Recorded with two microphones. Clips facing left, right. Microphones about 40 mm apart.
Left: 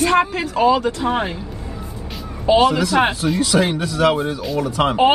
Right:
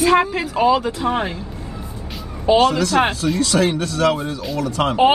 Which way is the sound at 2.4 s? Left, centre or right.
Centre.